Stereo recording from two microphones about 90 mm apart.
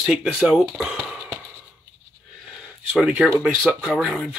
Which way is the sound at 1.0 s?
5° left (ahead or behind).